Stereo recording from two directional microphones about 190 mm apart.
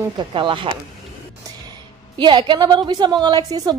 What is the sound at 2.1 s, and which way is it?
Speech, 25° right (ahead or behind).